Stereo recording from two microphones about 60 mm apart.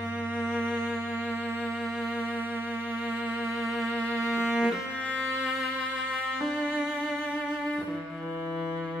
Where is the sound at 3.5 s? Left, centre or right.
Centre.